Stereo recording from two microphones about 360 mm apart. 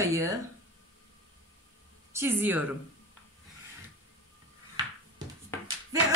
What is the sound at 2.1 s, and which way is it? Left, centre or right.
Speech, centre.